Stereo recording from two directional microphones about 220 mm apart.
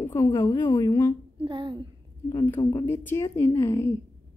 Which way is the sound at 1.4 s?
20° right (ahead or behind).